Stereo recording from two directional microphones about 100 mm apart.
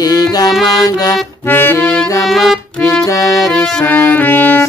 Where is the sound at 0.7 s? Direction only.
40° left (ahead or behind).